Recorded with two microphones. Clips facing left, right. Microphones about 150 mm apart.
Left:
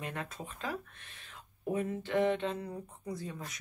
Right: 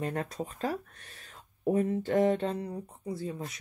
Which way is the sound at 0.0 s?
40° right (ahead or behind).